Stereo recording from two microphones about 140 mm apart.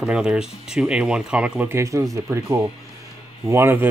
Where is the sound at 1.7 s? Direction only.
20° right (ahead or behind).